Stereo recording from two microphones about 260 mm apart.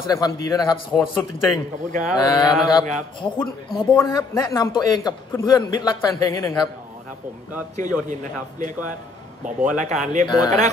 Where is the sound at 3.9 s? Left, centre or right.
Centre.